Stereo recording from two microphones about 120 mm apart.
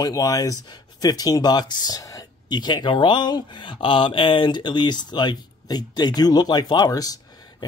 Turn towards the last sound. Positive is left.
turn(degrees=30)  # may be behind; listen again after turning